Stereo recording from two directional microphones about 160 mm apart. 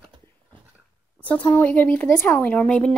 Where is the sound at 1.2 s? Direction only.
10° left (ahead or behind).